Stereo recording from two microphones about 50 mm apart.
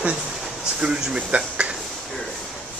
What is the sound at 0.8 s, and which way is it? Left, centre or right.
Speech, centre.